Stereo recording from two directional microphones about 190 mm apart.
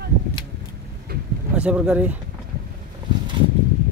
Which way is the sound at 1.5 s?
5° right (ahead or behind).